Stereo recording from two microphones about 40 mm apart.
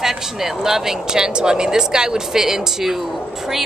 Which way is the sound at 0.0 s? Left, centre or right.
Centre.